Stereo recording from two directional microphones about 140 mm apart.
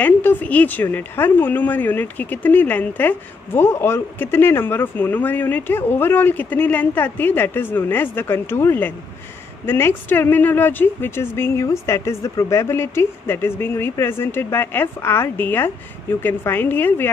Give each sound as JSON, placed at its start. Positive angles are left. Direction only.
{"t": 0.0, "sound": "a woman's voice", "side_deg": 15}